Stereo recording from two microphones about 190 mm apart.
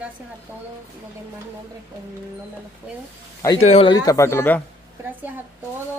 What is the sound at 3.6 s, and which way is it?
Speech, 30° left (ahead or behind).